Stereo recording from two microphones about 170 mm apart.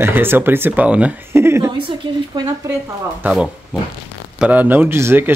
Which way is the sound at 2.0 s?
30° right (ahead or behind).